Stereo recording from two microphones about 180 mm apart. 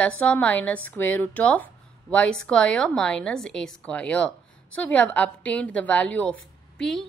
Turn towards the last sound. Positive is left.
turn(degrees=5)  # may be behind; listen again after turning